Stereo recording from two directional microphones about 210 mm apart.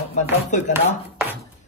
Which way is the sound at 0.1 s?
35° left (ahead or behind).